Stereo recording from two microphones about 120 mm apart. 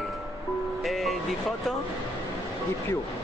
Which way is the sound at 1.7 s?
5° left (ahead or behind).